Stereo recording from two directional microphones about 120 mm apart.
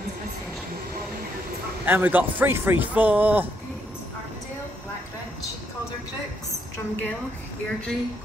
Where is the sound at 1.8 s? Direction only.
15° right (ahead or behind).